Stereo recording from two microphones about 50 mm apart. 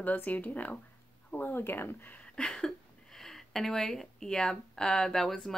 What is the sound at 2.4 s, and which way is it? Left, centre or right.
Speech, centre.